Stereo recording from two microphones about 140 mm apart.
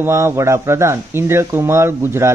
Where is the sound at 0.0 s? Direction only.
20° right (ahead or behind).